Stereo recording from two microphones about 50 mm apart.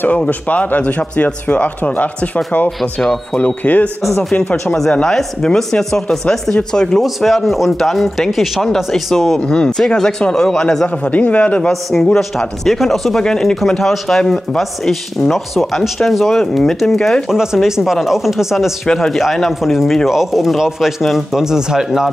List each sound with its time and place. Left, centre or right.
0.3 s speech: left
2.8 s speech: centre
3.3 s speech: left
4.3 s speech: left
7.0 s speech: centre
9.4 s speech: centre
11.1 s speech: left
11.7 s speech: centre
13.2 s speech: centre
17.3 s speech: centre